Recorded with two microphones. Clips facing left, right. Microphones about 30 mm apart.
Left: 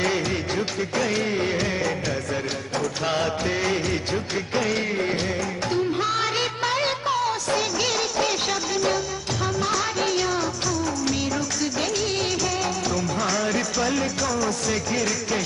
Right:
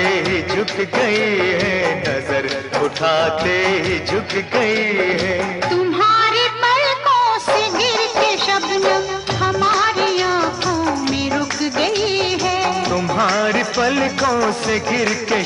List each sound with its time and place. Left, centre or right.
0.0 s music: right
12.4 s music: right